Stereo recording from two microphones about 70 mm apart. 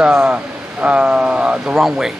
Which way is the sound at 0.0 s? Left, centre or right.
Centre.